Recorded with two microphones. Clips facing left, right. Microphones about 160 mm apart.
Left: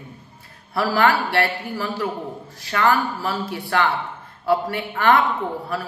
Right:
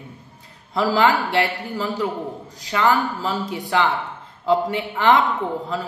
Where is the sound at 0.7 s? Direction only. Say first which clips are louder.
Right 1 dB; 20° right (ahead or behind).